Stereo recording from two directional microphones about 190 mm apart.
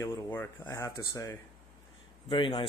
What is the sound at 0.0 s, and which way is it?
Speech, 15° left (ahead or behind).